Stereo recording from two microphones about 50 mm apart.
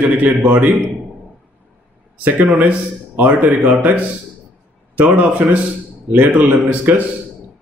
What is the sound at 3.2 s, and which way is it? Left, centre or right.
Speech, right.